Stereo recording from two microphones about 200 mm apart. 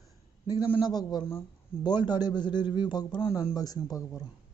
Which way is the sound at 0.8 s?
20° left (ahead or behind).